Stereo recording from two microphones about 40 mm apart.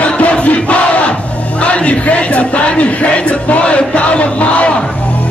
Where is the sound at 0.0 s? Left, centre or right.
Left.